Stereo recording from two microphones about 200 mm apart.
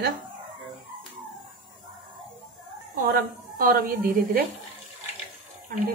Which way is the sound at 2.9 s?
45° right (ahead or behind).